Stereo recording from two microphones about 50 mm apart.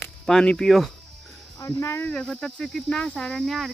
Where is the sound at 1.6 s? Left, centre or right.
Left.